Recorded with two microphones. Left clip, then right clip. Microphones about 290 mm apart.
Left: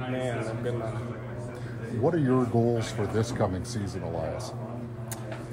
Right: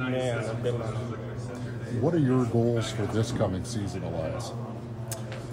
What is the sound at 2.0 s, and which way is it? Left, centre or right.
Speech, centre.